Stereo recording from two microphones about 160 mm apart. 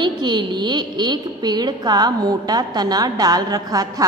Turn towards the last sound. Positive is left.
turn(degrees=-25)  # may be behind; listen again after turning